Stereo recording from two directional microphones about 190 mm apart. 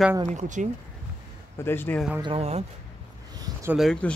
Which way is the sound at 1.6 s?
10° left (ahead or behind).